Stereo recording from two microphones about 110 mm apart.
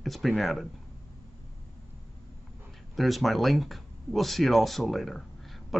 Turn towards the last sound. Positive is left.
turn(degrees=0)  # may be behind; listen again after turning